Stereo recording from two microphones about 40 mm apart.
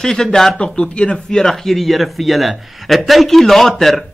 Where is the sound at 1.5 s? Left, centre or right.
Centre.